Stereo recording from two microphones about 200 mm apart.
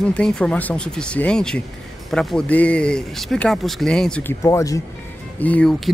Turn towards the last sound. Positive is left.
turn(degrees=5)  # may be behind; listen again after turning